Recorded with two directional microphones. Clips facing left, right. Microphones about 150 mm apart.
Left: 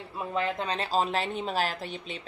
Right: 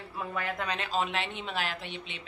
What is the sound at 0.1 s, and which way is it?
Speech, 25° left (ahead or behind).